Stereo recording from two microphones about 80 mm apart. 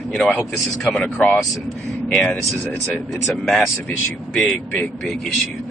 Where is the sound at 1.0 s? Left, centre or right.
Centre.